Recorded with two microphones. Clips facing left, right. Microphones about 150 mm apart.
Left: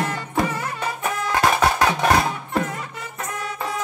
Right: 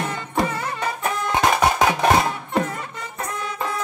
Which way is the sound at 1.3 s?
20° right (ahead or behind).